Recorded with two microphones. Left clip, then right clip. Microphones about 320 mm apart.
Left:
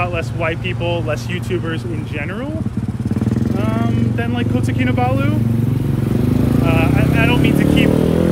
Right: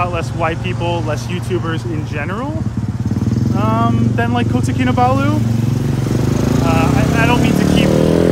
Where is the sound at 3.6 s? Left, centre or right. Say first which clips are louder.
Right 9 dB; centre.